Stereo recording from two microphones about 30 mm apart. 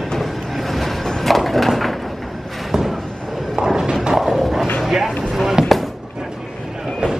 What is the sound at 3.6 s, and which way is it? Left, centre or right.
Clip-clop, right.